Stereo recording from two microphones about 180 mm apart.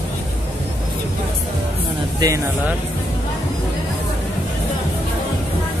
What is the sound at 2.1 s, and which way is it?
Speech, 20° right (ahead or behind).